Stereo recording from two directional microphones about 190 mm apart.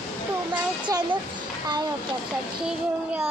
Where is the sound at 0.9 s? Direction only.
15° right (ahead or behind).